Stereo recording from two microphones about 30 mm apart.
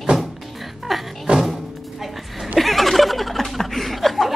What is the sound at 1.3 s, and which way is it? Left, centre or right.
Music, right.